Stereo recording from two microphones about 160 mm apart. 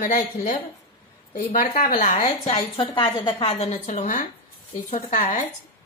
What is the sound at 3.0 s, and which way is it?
Speech, 30° left (ahead or behind).